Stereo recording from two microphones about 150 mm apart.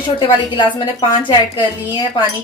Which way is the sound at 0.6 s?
30° left (ahead or behind).